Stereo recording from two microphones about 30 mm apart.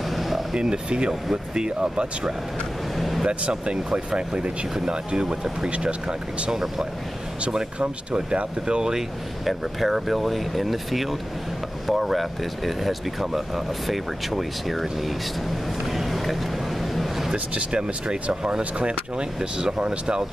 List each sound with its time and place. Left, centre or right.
0.1 s air conditioning: centre
0.6 s speech: right
3.0 s vehicle: centre
3.3 s speech: right
5.7 s speech: right
6.5 s speech: centre
8.3 s speech: right
9.5 s speech: centre
15.9 s a sound: centre
17.6 s speech: right